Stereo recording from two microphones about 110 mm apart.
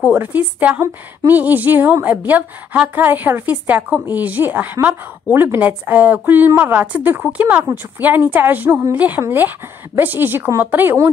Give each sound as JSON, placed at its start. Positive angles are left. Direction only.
{"t": 0.0, "sound": "a woman's voice", "side_deg": -15}